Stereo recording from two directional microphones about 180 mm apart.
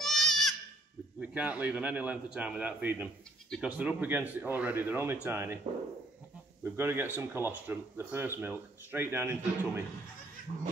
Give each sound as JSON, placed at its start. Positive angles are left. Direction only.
{"t": 0.0, "sound": "goat", "side_deg": 0}
{"t": 1.2, "sound": "speech", "side_deg": -10}
{"t": 3.4, "sound": "speech", "side_deg": 0}
{"t": 3.7, "sound": "speech", "side_deg": -10}
{"t": 6.6, "sound": "speech", "side_deg": -10}
{"t": 10.5, "sound": "cat", "side_deg": -40}